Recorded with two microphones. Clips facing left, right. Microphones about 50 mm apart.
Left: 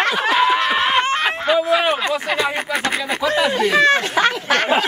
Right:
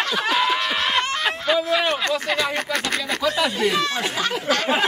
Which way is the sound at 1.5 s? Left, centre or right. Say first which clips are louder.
Left 4 dB; centre.